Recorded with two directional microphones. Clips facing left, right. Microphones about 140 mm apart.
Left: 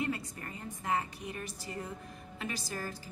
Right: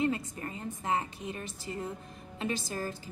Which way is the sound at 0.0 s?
25° right (ahead or behind).